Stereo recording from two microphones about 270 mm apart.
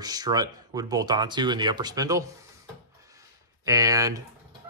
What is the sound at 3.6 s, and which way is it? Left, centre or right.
Speech, centre.